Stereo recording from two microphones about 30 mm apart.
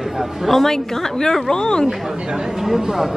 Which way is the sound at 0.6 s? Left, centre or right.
Centre.